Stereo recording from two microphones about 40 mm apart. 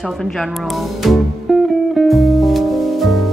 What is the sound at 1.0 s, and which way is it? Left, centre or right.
Speech, centre.